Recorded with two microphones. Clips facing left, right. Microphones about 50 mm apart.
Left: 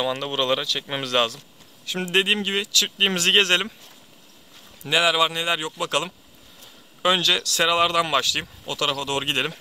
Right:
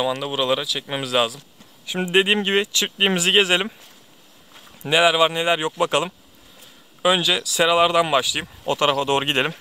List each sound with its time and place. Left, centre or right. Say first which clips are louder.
0.0 s speech: right 2 dB; centre
4.8 s speech: right 3 dB; centre
7.0 s speech: right 2 dB; centre
8.6 s speech: right 7 dB; right